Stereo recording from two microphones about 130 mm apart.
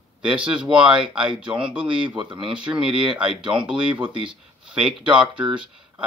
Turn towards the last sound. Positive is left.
turn(degrees=-5)  # may be behind; listen again after turning